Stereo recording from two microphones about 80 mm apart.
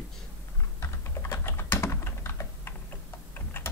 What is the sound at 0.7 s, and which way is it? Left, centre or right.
Typing, left.